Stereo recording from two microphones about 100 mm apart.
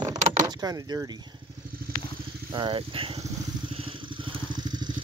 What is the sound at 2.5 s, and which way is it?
Speech, 55° right (ahead or behind).